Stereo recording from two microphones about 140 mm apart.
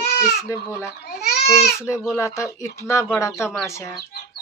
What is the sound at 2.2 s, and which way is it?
Speech, 20° left (ahead or behind).